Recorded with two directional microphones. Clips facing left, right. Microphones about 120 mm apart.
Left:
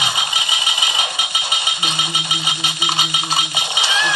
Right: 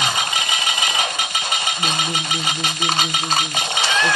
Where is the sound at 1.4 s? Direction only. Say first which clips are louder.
Right 1 dB; 45° right (ahead or behind).